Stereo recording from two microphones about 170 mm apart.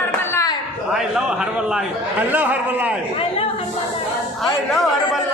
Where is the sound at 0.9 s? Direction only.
5° right (ahead or behind).